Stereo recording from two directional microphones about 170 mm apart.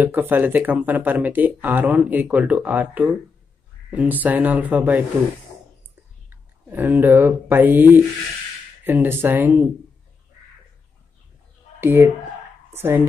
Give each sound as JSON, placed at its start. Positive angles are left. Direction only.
{"t": 0.0, "sound": "speech", "side_deg": -10}
{"t": 6.3, "sound": "speech", "side_deg": -10}
{"t": 11.8, "sound": "speech", "side_deg": -15}